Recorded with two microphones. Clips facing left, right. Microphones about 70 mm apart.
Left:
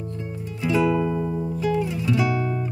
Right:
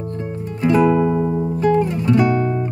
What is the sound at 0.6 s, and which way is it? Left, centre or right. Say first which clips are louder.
Music: right 6 dB; right.